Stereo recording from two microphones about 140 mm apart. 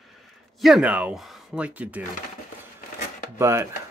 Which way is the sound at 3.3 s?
20° right (ahead or behind).